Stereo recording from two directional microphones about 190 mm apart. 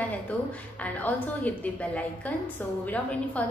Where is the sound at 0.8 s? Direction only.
10° left (ahead or behind).